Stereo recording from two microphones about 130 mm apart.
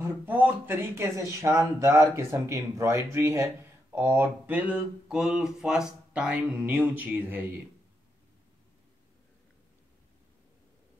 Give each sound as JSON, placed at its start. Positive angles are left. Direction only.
{"t": 0.0, "sound": "speech", "side_deg": -15}